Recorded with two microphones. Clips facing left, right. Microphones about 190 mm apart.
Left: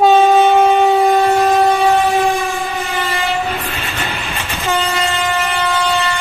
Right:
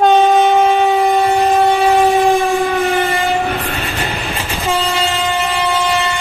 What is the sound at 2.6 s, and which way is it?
Train, 55° right (ahead or behind).